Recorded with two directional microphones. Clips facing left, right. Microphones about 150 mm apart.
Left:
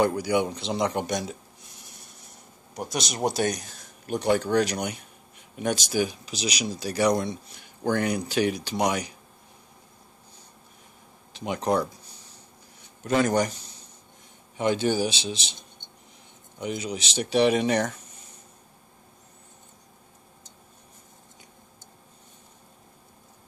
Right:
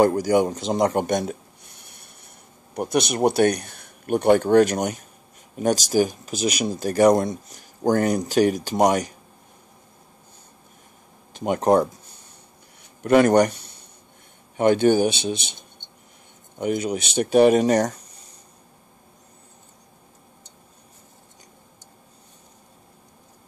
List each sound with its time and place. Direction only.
0.0 s speech: 45° right (ahead or behind)
11.3 s speech: 45° right (ahead or behind)
13.0 s a man's voice: 60° right (ahead or behind); by 18.2 s 35° right (ahead or behind)